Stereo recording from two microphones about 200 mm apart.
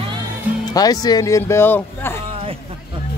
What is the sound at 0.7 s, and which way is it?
Speech, 20° left (ahead or behind).